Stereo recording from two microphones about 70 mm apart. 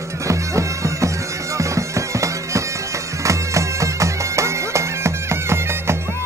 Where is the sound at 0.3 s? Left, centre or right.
Right.